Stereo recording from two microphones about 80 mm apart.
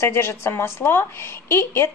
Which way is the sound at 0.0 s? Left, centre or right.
Left.